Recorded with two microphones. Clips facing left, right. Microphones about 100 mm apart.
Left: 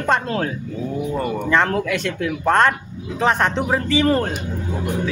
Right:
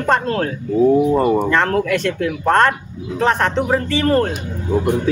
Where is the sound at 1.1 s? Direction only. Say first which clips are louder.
Right 8 dB; 35° right (ahead or behind).